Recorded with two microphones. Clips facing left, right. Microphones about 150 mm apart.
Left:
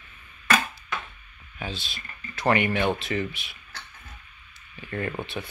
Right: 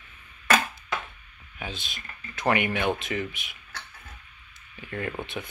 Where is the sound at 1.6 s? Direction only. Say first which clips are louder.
Left 2 dB; 15° right (ahead or behind).